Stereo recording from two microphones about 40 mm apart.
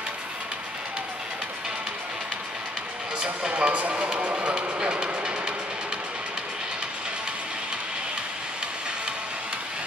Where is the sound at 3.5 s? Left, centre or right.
Right.